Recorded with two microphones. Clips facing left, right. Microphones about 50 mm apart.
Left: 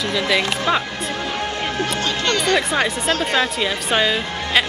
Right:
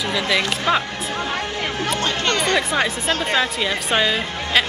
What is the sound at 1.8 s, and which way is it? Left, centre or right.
Music, right.